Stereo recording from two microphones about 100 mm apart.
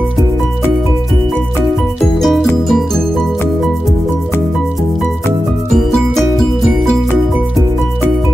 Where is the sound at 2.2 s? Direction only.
5° left (ahead or behind).